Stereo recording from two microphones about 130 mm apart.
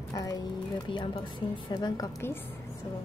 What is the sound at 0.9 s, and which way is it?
A woman's voice, 40° left (ahead or behind).